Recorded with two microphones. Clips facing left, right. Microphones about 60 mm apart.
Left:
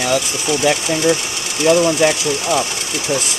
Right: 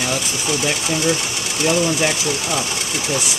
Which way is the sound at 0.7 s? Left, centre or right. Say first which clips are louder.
Left 6 dB; left.